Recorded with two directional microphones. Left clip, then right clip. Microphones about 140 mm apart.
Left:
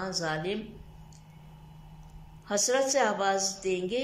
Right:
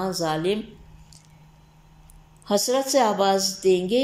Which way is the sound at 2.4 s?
30° right (ahead or behind).